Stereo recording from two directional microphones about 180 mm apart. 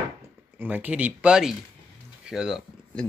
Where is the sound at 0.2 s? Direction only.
10° right (ahead or behind).